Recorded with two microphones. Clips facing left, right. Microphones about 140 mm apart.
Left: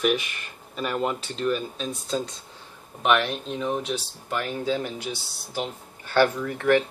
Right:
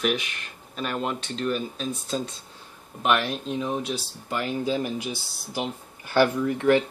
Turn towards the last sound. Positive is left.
turn(degrees=-15)  # may be behind; listen again after turning